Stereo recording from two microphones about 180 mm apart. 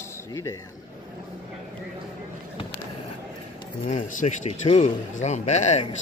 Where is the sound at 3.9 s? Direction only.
40° left (ahead or behind).